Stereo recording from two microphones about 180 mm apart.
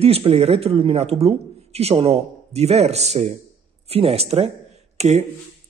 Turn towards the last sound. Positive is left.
turn(degrees=-40)  # may be behind; listen again after turning